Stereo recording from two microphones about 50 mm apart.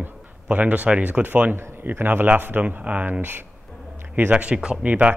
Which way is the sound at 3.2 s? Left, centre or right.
Right.